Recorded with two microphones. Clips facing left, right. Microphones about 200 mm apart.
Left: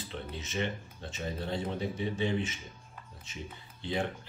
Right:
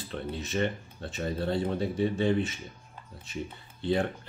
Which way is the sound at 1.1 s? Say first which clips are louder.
Right 6 dB; 55° right (ahead or behind).